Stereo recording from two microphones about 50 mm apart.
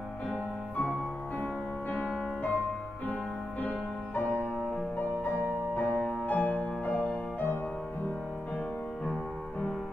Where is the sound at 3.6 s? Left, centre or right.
Left.